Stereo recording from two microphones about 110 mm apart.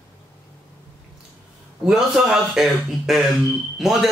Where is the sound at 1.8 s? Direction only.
5° right (ahead or behind).